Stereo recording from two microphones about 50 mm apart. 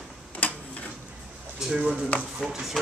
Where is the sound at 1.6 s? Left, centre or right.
Centre.